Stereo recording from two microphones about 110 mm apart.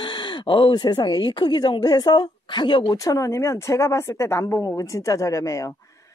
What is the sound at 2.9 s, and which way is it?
A woman's voice, 30° left (ahead or behind).